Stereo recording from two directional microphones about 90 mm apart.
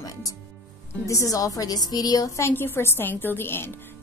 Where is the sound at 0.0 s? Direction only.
40° left (ahead or behind).